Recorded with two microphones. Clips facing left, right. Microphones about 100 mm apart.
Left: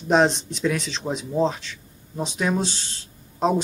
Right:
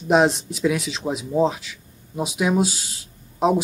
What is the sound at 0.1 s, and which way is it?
Speech, 5° right (ahead or behind).